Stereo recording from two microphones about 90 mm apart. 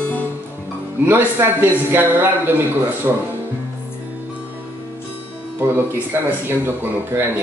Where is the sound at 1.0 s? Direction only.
25° right (ahead or behind).